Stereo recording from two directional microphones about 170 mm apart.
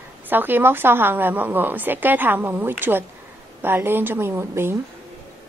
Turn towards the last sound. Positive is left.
turn(degrees=-15)  # may be behind; listen again after turning